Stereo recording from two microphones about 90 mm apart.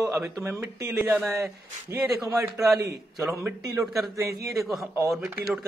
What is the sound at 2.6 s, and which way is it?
Speech, 5° right (ahead or behind).